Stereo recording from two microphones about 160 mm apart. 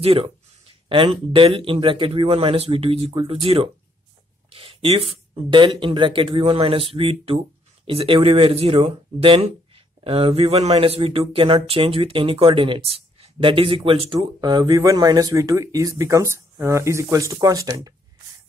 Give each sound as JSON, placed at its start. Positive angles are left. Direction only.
{"t": 0.0, "sound": "speech", "side_deg": -35}